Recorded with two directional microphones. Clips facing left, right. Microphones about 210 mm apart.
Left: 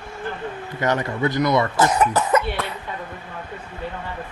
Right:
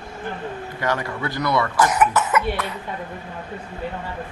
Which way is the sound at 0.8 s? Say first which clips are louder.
Left 4 dB; 20° left (ahead or behind).